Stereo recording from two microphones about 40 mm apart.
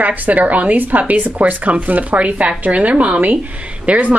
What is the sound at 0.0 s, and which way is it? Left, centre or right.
Speech, right.